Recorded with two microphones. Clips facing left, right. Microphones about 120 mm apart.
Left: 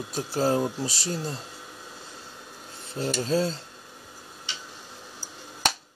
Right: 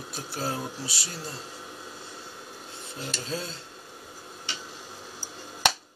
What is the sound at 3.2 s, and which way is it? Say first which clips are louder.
Speech: left 11 dB; 40° left (ahead or behind).